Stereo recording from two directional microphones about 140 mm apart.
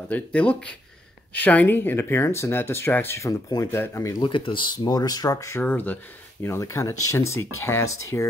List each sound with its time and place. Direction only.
0.1 s speech: 10° left (ahead or behind)
4.2 s speech: 35° left (ahead or behind); by 8.3 s 20° left (ahead or behind)